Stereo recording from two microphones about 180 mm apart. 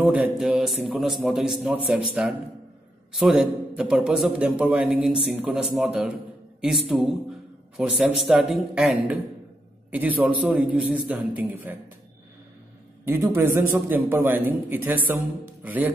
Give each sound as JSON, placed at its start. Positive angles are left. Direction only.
{"t": 0.0, "sound": "a man's voice", "side_deg": -10}
{"t": 13.0, "sound": "a man's voice", "side_deg": -15}